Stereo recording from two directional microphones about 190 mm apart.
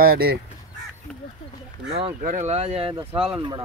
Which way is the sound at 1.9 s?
40° right (ahead or behind).